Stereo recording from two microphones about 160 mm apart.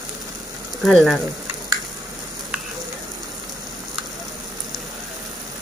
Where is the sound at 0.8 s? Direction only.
Centre (ahead or behind).